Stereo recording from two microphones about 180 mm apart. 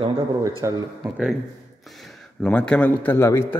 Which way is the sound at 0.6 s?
15° right (ahead or behind).